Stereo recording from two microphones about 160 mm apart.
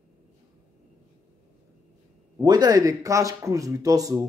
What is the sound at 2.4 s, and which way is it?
Speech, 25° right (ahead or behind).